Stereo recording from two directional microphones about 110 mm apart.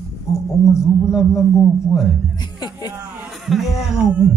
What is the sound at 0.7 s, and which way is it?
Speech, centre (ahead or behind).